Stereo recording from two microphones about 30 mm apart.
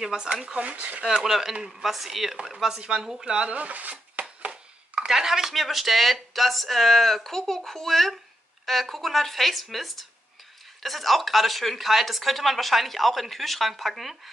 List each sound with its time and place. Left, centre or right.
0.2 s speech: right
0.6 s speech: right
1.2 s a woman's voice: centre
2.5 s speech: right
3.4 s speech: right
3.9 s a sound: right
5.0 s speech: centre
5.6 s a woman's voice: centre